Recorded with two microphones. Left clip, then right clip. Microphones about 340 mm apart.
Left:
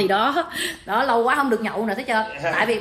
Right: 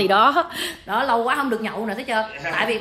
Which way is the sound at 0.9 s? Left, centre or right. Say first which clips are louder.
Left 1 dB; centre.